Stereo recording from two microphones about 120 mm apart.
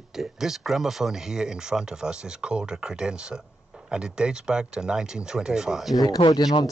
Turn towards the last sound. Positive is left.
turn(degrees=30)  # may be behind; listen again after turning